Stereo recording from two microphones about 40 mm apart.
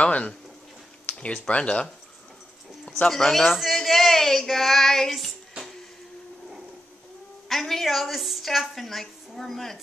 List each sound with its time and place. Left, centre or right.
0.0 s a sound: left
1.5 s speech: left
3.3 s a woman's voice: centre
3.6 s child singing: centre
7.4 s a woman's voice: centre